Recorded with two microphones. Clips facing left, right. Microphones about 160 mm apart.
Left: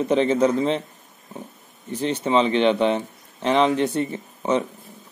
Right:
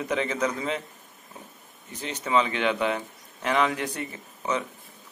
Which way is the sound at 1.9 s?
30° left (ahead or behind).